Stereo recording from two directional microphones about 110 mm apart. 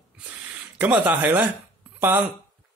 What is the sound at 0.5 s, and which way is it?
Speech, 15° right (ahead or behind).